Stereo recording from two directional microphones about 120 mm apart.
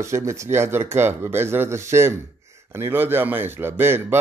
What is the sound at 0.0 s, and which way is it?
Speech, 25° right (ahead or behind).